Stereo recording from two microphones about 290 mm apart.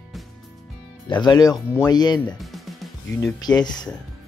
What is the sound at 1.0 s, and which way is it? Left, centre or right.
Speech, centre.